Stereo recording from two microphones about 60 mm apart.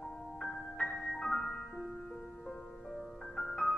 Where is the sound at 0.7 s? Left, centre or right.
Left.